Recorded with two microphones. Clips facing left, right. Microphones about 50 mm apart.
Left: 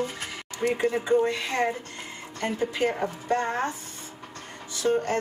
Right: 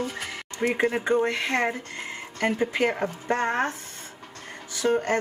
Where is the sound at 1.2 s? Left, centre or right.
Right.